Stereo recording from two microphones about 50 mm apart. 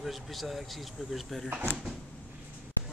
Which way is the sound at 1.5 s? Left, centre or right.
Right.